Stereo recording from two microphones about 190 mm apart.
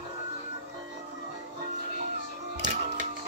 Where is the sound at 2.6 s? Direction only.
40° right (ahead or behind).